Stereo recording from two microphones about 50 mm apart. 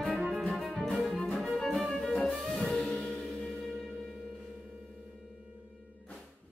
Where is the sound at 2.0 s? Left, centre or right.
Centre.